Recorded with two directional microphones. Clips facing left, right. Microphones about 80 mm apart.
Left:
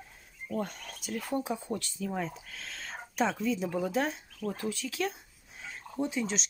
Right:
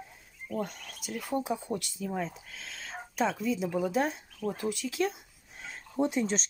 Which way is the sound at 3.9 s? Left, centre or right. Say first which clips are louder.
Right 1 dB; right.